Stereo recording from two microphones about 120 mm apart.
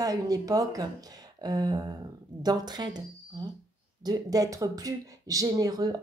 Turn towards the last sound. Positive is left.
turn(degrees=-30)  # may be behind; listen again after turning